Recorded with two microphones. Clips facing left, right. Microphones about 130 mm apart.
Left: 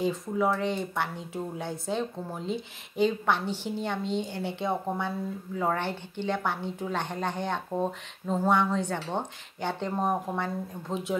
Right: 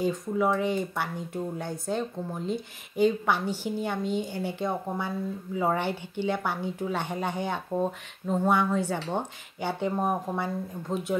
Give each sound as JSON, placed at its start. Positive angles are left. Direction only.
{"t": 0.0, "sound": "speech", "side_deg": 0}